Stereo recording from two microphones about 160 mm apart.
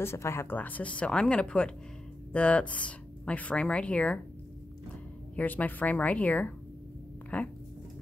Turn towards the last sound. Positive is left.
turn(degrees=10)  # may be behind; listen again after turning